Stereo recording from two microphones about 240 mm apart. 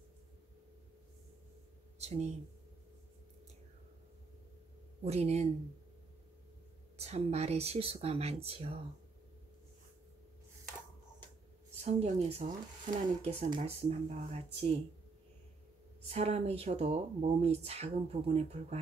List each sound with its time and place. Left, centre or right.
2.0 s speech: right
5.0 s speech: right
7.0 s speech: right
11.8 s speech: right
16.1 s speech: right